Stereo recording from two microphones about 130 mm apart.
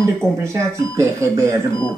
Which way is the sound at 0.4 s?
25° right (ahead or behind).